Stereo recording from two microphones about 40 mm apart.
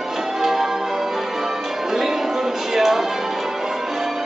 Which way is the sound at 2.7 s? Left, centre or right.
Centre.